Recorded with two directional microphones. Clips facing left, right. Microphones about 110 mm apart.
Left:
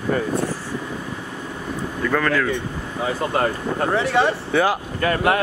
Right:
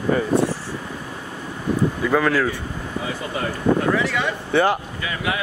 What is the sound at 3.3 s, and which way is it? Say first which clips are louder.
Speech: right 1 dB; 50° left (ahead or behind).